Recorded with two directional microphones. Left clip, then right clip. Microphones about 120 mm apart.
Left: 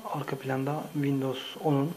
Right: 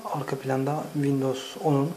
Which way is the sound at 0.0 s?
Centre (ahead or behind).